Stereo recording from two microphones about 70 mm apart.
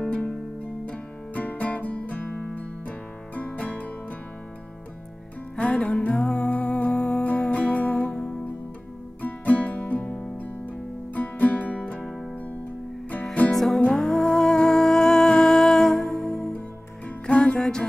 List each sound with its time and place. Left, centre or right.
0.0 s music: centre
5.6 s music: centre
13.2 s music: centre
13.5 s music: centre
13.7 s music: centre
17.3 s music: centre